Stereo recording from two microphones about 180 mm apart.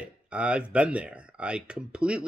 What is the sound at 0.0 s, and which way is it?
Speech, 5° right (ahead or behind).